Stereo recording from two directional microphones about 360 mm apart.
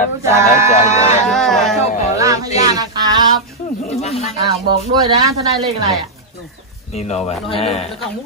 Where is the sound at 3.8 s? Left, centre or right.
Centre.